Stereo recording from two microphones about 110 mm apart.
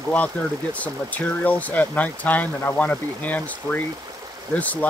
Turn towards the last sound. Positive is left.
turn(degrees=15)  # may be behind; listen again after turning